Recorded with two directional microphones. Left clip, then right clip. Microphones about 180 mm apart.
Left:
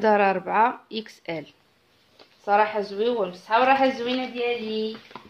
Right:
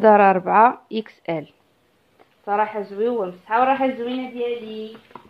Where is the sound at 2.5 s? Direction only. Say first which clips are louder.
Left 1 dB; 25° right (ahead or behind).